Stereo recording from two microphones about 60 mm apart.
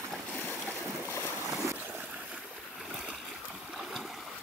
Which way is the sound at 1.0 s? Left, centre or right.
Left.